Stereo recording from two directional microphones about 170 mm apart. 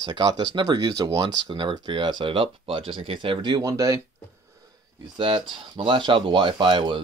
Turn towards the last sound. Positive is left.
turn(degrees=-30)  # may be behind; listen again after turning